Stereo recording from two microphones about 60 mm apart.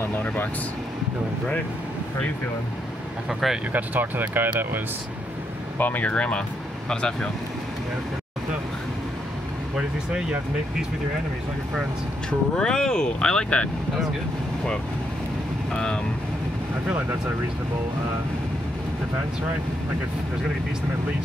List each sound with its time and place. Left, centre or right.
0.2 s speech: left
3.3 s speech: centre
3.7 s speech: right
5.8 s speech: left
6.1 s speech: centre
12.3 s speech: centre
15.7 s speech: centre